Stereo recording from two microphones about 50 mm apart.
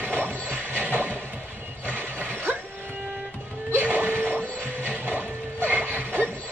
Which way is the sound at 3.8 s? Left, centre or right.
Right.